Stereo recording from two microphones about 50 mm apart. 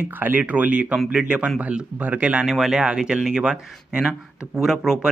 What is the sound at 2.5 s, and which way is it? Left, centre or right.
Speech, centre.